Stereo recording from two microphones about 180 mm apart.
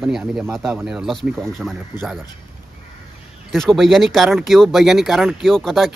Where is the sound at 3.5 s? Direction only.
Centre (ahead or behind).